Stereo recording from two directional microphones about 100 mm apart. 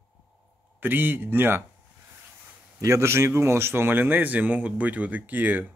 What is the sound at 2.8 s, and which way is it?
A man's voice, 30° right (ahead or behind).